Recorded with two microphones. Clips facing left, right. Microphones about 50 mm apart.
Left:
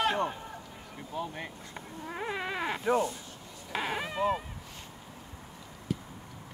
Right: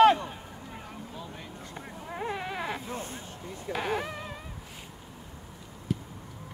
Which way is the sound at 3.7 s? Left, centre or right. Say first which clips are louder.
Right 2 dB; left.